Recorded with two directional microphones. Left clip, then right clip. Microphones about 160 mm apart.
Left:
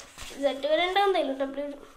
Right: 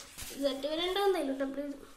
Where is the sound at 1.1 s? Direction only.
20° right (ahead or behind).